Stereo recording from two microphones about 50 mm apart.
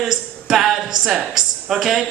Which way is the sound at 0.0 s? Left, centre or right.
Centre.